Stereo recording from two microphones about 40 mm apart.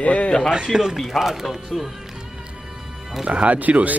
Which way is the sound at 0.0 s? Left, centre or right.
Left.